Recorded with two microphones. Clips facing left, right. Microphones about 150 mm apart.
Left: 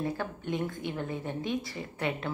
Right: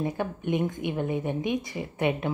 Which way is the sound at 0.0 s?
20° right (ahead or behind).